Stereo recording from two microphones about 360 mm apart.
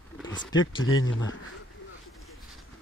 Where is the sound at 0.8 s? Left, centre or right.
Left.